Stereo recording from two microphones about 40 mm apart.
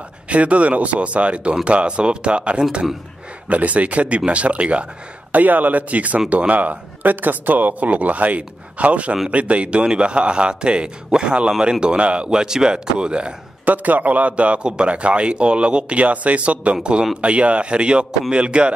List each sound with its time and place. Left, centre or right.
0.3 s speech: right
5.3 s a man's voice: right
13.7 s a man's voice: right